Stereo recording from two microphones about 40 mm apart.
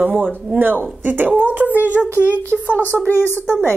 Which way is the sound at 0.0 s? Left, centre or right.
Right.